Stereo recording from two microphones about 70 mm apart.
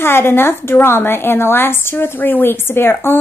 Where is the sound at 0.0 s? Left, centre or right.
Left.